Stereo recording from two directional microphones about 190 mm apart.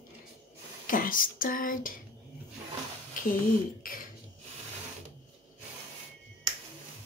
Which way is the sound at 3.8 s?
50° left (ahead or behind).